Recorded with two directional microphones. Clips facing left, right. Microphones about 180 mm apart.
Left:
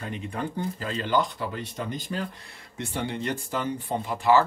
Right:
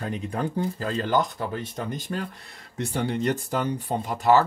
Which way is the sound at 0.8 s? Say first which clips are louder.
Right 1 dB; 45° right (ahead or behind).